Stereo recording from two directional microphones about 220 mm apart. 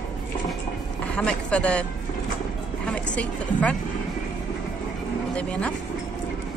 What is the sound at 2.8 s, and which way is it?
Speech, 5° left (ahead or behind).